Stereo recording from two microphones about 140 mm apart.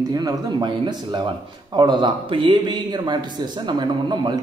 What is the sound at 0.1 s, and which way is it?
A man's voice, 30° right (ahead or behind).